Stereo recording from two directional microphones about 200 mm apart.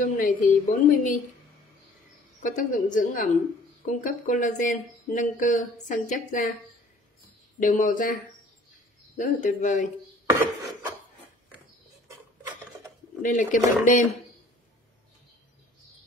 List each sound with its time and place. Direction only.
0.0 s speech: 40° left (ahead or behind)
2.4 s speech: 40° left (ahead or behind)
7.6 s speech: 40° left (ahead or behind)
10.2 s chopping: 10° right (ahead or behind)
12.1 s a sound: 15° right (ahead or behind)
13.2 s speech: 40° left (ahead or behind)